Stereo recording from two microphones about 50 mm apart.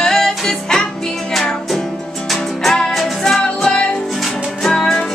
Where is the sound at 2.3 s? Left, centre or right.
Centre.